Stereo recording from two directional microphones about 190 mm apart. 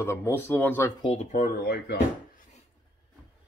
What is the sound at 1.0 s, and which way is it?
Speech, 40° left (ahead or behind).